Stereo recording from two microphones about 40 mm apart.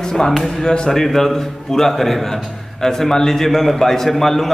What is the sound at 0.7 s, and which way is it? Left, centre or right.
Speech, centre.